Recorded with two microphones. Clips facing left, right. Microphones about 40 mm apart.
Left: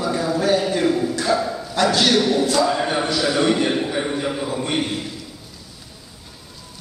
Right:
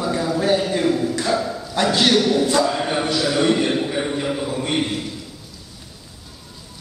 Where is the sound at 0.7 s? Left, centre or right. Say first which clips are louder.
Even; centre.